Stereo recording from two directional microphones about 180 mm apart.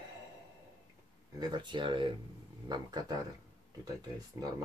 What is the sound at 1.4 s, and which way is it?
Speech, 25° right (ahead or behind).